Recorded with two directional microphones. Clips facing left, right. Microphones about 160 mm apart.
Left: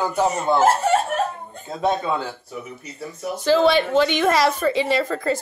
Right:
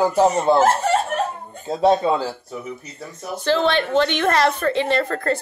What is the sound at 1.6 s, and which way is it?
Speech, 30° right (ahead or behind).